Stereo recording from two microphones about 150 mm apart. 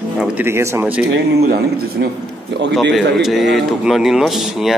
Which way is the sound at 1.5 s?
90° right.